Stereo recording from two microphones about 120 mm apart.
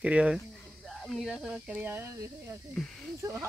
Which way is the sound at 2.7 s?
5° left (ahead or behind).